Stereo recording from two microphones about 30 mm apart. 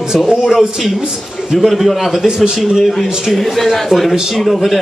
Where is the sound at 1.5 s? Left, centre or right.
Centre.